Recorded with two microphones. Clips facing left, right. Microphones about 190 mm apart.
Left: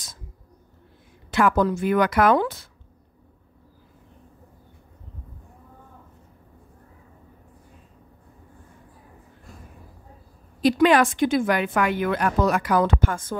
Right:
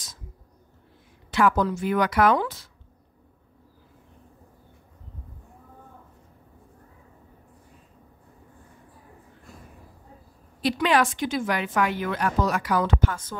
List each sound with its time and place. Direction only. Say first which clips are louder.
1.3 s speech: left 2 dB; 55° left (ahead or behind)
10.6 s speech: left 5 dB; 45° left (ahead or behind)